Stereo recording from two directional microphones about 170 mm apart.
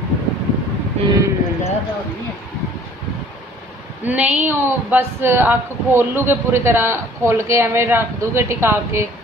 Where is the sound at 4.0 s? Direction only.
10° right (ahead or behind).